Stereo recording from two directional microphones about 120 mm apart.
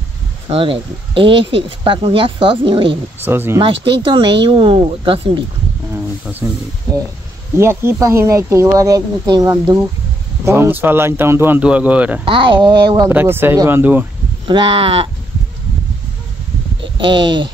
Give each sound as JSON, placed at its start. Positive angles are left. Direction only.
{"t": 0.5, "sound": "speech", "side_deg": -50}
{"t": 3.3, "sound": "speech", "side_deg": -20}
{"t": 3.6, "sound": "speech", "side_deg": -45}
{"t": 7.5, "sound": "speech", "side_deg": -20}
{"t": 10.4, "sound": "speech", "side_deg": -20}
{"t": 12.3, "sound": "speech", "side_deg": -45}
{"t": 13.1, "sound": "speech", "side_deg": -20}
{"t": 14.5, "sound": "speech", "side_deg": -45}
{"t": 16.8, "sound": "speech", "side_deg": -45}